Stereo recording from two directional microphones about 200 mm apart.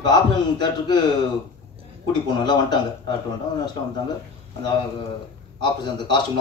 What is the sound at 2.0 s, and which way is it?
A man's voice, 20° left (ahead or behind).